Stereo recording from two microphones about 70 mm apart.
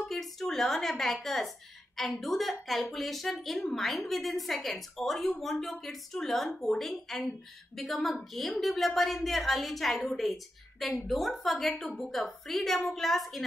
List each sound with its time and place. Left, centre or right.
0.1 s a woman's voice: centre